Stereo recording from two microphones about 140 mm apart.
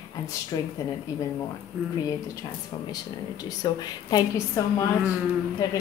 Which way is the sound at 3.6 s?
25° left (ahead or behind).